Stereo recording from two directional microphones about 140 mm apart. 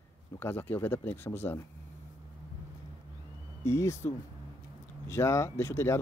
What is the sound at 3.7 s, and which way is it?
Speech, 20° left (ahead or behind).